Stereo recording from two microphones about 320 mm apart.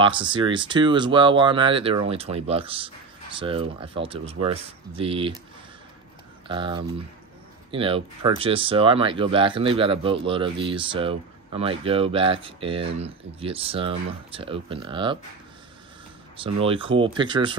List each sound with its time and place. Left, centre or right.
0.0 s speech: centre
6.4 s speech: centre
16.6 s speech: centre